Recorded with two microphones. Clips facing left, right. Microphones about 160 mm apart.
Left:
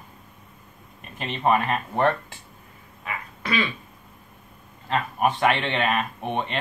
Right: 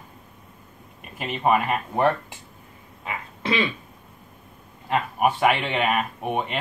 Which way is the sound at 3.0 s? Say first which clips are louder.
Right 3 dB; 25° right (ahead or behind).